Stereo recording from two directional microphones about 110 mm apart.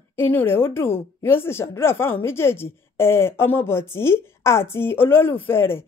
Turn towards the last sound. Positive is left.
turn(degrees=20)  # may be behind; listen again after turning